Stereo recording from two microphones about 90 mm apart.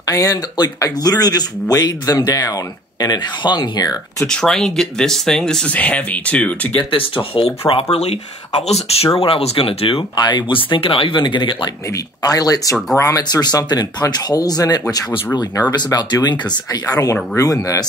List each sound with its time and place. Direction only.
0.0 s speech: 40° left (ahead or behind)
4.3 s speech: 5° left (ahead or behind)
6.8 s speech: 70° left (ahead or behind); by 8.0 s 90° left
9.2 s speech: 90° left
10.1 s speech: 55° left (ahead or behind)
12.2 s speech: 40° left (ahead or behind)
13.3 s speech: 50° left (ahead or behind)